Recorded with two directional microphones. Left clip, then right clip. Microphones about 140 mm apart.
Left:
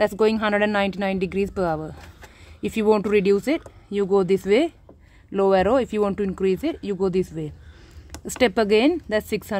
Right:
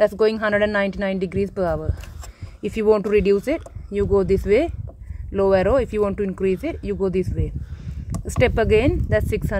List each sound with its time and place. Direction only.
0.0 s a woman's voice: 35° left (ahead or behind)